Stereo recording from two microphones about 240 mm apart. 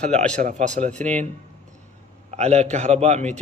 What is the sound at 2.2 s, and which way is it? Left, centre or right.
A man's voice, right.